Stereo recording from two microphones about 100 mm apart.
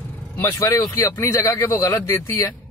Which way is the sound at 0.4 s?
30° left (ahead or behind).